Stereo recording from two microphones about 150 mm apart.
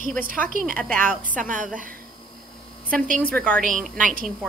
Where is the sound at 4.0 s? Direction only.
60° right (ahead or behind).